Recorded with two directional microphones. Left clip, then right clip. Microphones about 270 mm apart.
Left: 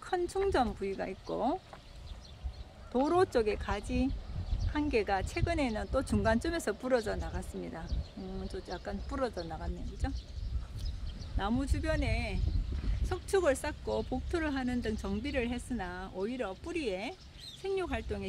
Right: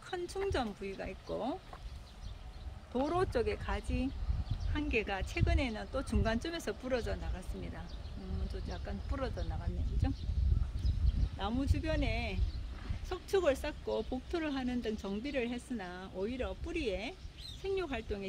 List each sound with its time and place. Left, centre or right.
0.0 s a sound: left
0.5 s speech: left
3.1 s speech: left
11.3 s speech: left